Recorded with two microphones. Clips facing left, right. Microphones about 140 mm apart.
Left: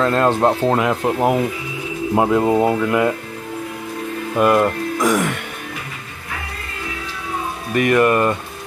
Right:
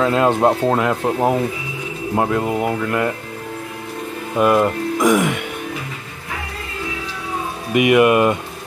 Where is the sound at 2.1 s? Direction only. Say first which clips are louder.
Left 4 dB; 20° left (ahead or behind).